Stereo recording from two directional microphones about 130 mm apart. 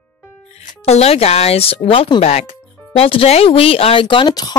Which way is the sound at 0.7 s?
55° left (ahead or behind).